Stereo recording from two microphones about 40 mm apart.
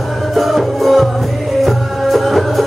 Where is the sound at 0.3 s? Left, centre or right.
Centre.